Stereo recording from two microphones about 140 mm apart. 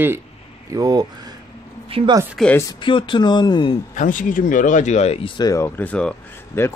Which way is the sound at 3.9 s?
65° left (ahead or behind).